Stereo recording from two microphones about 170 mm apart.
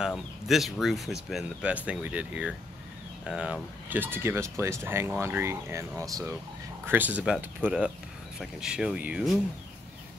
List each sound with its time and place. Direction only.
0.0 s speech: centre (ahead or behind)